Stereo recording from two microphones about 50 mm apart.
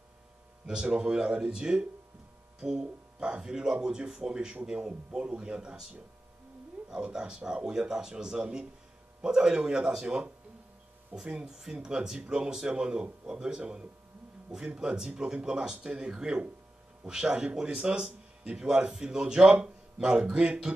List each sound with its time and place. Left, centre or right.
0.7 s speech: centre
11.1 s speech: right
11.4 s speech: centre